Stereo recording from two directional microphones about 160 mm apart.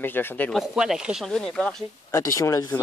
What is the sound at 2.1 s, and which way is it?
Speech, 20° left (ahead or behind).